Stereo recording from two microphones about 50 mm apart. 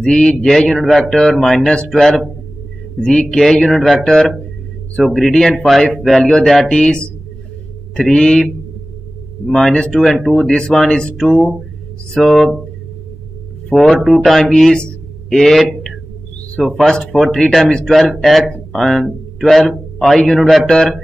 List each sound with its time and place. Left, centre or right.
0.0 s a man's voice: centre
1.0 s a man's voice: centre
6.7 s speech: centre
9.5 s speech: centre
10.7 s a man's voice: centre
13.7 s speech: centre
15.3 s a sound: centre
16.6 s a man's voice: centre
17.9 s a man's voice: centre
20.6 s speech: centre